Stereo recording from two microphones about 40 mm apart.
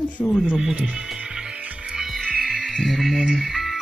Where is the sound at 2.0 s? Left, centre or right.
Centre.